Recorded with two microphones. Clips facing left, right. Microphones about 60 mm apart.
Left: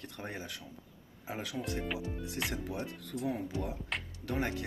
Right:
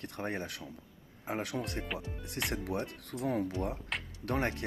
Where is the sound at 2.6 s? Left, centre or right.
Right.